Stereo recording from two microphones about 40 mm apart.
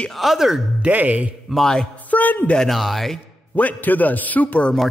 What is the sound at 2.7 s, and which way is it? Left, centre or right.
Speech, centre.